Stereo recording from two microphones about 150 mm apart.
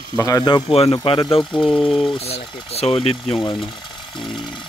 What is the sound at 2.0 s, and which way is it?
Speech, 40° left (ahead or behind).